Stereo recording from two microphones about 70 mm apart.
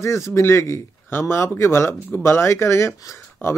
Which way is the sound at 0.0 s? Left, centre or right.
Left.